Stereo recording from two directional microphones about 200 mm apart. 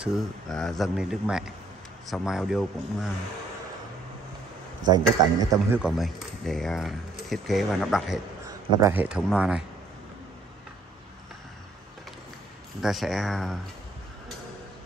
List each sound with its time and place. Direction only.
0.0 s speech: centre (ahead or behind)
4.9 s a man's voice: 15° right (ahead or behind)
5.8 s speech: centre (ahead or behind)
8.5 s a man's voice: 10° right (ahead or behind)
12.8 s speech: centre (ahead or behind)